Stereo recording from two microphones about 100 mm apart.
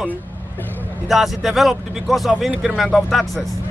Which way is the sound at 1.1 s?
5° right (ahead or behind).